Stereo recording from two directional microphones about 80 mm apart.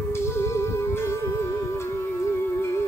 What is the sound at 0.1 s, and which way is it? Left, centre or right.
Music, left.